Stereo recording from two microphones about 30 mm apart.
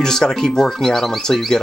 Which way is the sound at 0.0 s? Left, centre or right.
Left.